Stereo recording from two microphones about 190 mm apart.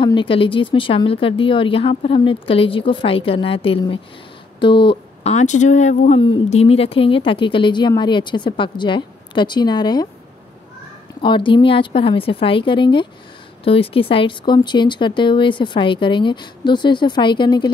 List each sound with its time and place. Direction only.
0.0 s speech: 25° left (ahead or behind)
11.2 s speech: 25° left (ahead or behind)